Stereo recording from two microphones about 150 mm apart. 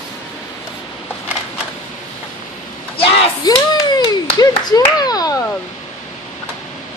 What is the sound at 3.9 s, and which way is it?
Clapping, 25° left (ahead or behind).